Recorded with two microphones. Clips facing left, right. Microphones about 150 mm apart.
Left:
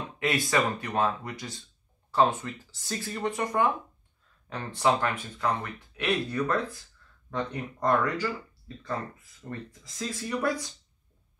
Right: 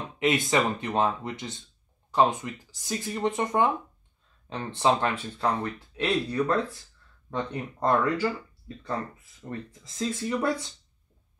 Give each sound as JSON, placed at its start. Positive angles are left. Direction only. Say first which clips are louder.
{"t": 0.2, "sound": "speech", "louder": "right 2 dB", "side_deg": -20}
{"t": 7.8, "sound": "speech", "louder": "right 2 dB", "side_deg": -25}
{"t": 9.4, "sound": "speech", "louder": "right 2 dB", "side_deg": -45}
{"t": 9.9, "sound": "speech", "louder": "right 4 dB", "side_deg": -25}